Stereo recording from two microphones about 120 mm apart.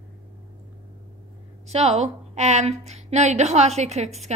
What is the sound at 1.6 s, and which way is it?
A woman's voice, 65° right (ahead or behind).